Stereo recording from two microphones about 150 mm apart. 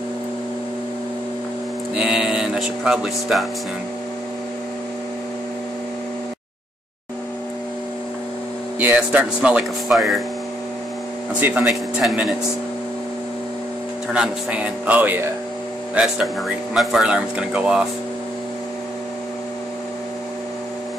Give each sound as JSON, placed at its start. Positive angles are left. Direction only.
{"t": 2.0, "sound": "speech", "side_deg": -5}
{"t": 8.7, "sound": "speech", "side_deg": -10}
{"t": 11.3, "sound": "speech", "side_deg": -10}
{"t": 14.1, "sound": "speech", "side_deg": -5}